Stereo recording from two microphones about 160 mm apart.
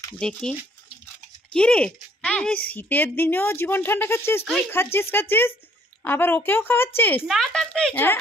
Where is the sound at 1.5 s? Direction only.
5° left (ahead or behind).